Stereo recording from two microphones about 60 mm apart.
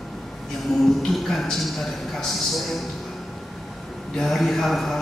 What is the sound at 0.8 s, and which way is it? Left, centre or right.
Speech, centre.